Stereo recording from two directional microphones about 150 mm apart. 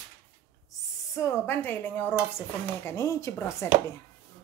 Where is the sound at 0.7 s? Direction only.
20° left (ahead or behind).